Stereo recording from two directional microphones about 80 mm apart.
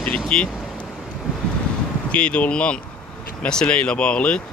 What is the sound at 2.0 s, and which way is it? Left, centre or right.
Speech, centre.